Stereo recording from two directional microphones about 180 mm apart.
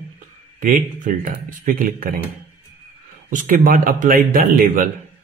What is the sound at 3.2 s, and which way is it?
Speech, 45° right (ahead or behind).